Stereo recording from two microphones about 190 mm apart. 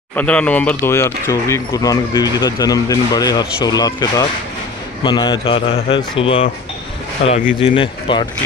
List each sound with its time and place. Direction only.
0.1 s speech: 5° left (ahead or behind); by 8.3 s 25° left (ahead or behind)